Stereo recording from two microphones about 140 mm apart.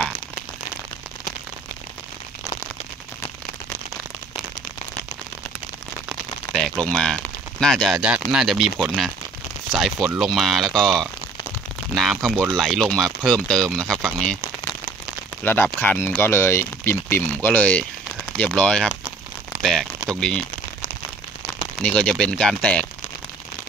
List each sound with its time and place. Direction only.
6.0 s a sound: centre (ahead or behind)
8.3 s speech: 5° right (ahead or behind)
15.4 s speech: 15° left (ahead or behind)
21.8 s speech: 5° left (ahead or behind)